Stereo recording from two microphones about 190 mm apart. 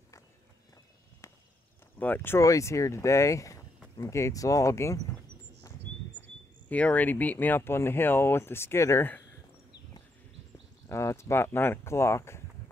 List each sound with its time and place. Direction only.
1.2 s walk: 15° left (ahead or behind)
2.0 s speech: 10° left (ahead or behind)
6.7 s speech: 10° left (ahead or behind)
10.9 s speech: 15° left (ahead or behind)